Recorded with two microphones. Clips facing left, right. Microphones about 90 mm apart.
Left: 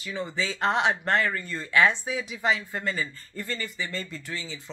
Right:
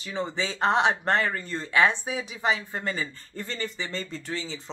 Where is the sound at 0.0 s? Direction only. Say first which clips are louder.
Right 1 dB; 25° right (ahead or behind).